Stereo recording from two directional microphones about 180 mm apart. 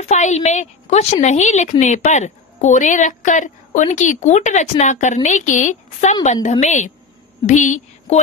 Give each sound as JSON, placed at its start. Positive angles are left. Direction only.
{"t": 0.1, "sound": "a woman's voice", "side_deg": 40}